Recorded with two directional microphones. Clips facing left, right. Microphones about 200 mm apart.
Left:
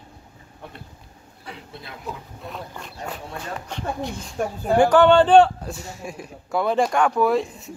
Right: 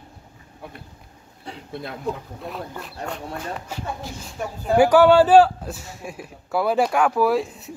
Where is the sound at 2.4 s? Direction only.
Centre (ahead or behind).